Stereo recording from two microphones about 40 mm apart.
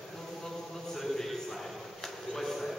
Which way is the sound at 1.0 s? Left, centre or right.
Centre.